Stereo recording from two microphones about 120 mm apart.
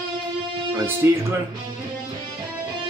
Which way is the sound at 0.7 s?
20° right (ahead or behind).